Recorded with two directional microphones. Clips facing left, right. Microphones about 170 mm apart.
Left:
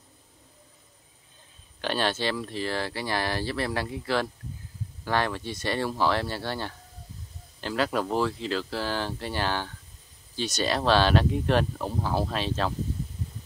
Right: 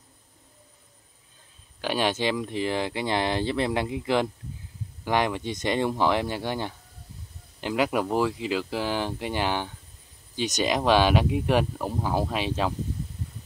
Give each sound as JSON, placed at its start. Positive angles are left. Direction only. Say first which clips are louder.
{"t": 1.8, "sound": "speech", "louder": "right 2 dB", "side_deg": -15}